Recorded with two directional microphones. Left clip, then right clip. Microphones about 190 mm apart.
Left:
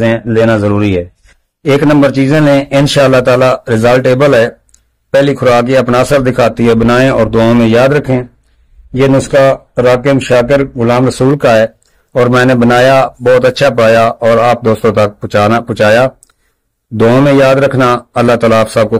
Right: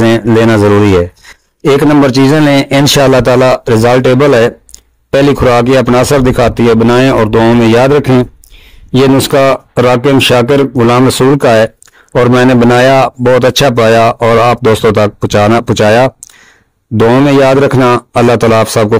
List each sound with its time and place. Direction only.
0.0 s a man's voice: 35° right (ahead or behind)
8.9 s a man's voice: 45° right (ahead or behind)